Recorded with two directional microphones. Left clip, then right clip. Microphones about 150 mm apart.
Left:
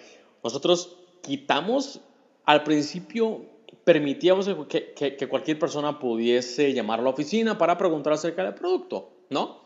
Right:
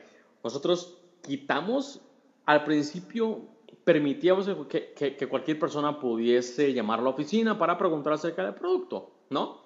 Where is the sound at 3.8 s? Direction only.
5° left (ahead or behind).